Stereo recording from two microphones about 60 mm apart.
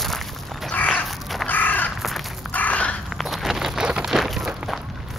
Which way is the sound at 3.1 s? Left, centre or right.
Centre.